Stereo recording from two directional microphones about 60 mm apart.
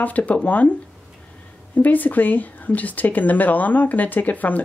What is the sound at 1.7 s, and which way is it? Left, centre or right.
Speech, left.